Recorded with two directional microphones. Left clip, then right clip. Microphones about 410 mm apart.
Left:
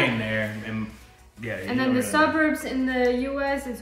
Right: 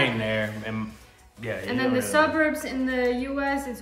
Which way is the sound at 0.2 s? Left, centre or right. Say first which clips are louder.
Right 1 dB; centre.